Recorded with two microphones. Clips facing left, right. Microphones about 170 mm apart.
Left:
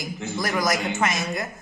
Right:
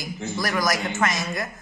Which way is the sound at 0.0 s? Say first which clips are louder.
Even; 20° left (ahead or behind).